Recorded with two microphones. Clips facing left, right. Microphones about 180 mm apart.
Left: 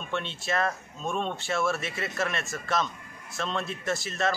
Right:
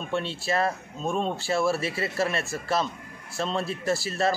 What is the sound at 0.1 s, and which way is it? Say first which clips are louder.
A man's voice: right 3 dB; 30° right (ahead or behind).